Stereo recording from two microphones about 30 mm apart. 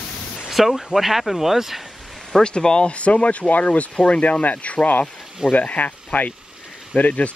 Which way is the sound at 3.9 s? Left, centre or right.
Left.